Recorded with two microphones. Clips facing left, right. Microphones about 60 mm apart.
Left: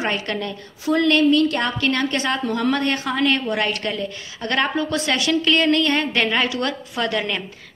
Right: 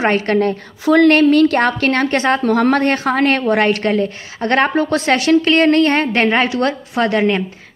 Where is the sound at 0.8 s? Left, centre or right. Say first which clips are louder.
Right 7 dB; right.